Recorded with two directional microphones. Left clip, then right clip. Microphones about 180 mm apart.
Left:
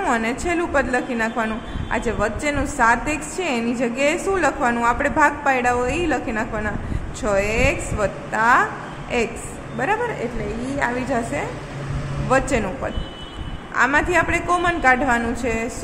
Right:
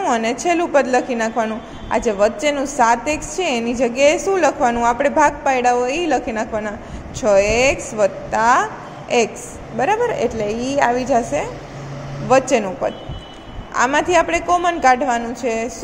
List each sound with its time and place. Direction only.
0.0 s a woman's voice: 10° right (ahead or behind)
9.8 s a woman's voice: 15° right (ahead or behind)